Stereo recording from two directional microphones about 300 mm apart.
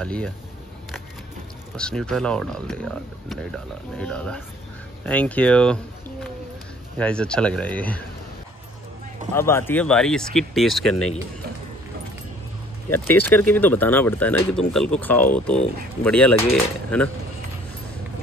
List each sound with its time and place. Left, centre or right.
0.0 s speech: centre
1.8 s speech: centre
7.0 s speech: centre
9.3 s speech: centre
12.9 s speech: left
13.5 s speech: centre